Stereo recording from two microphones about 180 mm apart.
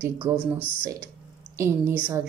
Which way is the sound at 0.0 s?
10° right (ahead or behind).